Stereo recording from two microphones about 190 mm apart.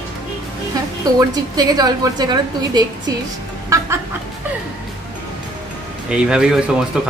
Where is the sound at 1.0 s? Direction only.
20° right (ahead or behind).